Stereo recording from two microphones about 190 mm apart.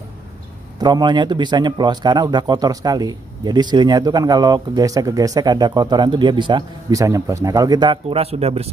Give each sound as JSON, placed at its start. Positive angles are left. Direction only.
{"t": 0.7, "sound": "speech", "side_deg": -20}